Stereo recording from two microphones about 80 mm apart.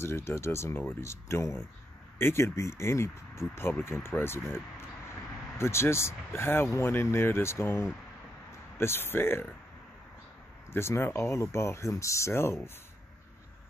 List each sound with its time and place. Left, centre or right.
0.0 s speech: left
10.7 s speech: left